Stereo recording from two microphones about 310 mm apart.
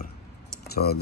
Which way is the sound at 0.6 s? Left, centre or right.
Left.